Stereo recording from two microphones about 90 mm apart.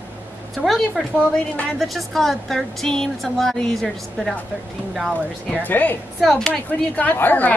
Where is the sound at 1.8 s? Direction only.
Centre (ahead or behind).